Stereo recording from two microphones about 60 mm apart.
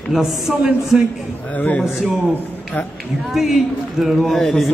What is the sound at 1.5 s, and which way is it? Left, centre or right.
Speech, left.